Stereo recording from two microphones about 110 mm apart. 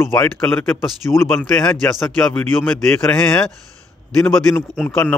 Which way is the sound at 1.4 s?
5° left (ahead or behind).